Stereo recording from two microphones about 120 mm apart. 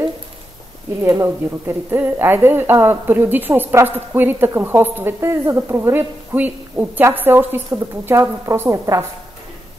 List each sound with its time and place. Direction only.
1.0 s a woman's voice: 25° right (ahead or behind)